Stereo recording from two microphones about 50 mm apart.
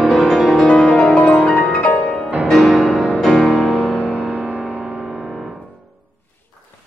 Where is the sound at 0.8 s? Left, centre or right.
Left.